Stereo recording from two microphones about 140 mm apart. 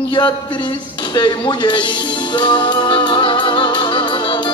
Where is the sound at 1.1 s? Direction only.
30° left (ahead or behind).